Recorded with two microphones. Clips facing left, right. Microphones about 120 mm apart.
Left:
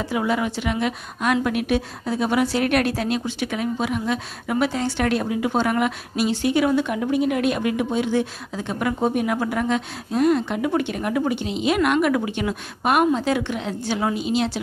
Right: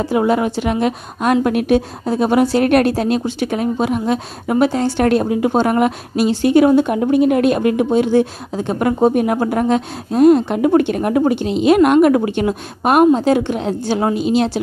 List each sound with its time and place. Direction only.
0.0 s a woman's voice: 40° right (ahead or behind)